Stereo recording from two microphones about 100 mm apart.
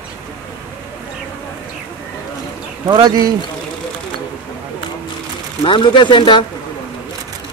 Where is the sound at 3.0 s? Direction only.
40° right (ahead or behind).